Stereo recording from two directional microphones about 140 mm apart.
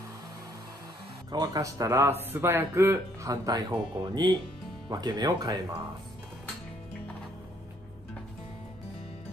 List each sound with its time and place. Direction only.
1.3 s speech: 30° right (ahead or behind)